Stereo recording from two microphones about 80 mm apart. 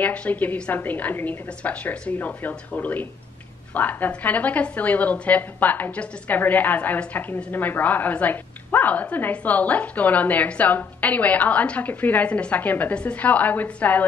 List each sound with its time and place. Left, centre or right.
0.0 s a woman's voice: centre